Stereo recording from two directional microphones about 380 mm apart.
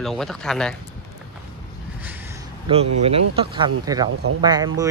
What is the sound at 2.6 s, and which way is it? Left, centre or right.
Speech, centre.